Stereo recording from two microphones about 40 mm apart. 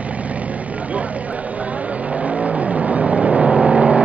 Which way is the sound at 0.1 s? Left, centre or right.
Right.